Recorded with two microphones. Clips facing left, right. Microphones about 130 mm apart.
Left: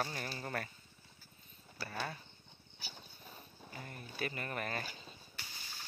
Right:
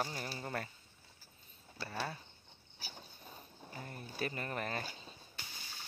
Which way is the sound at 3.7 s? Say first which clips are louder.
Right 2 dB; 30° right (ahead or behind).